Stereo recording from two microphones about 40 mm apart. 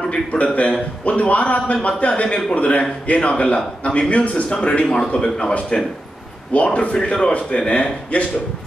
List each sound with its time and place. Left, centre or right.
0.1 s a man's voice: left
4.9 s a man's voice: centre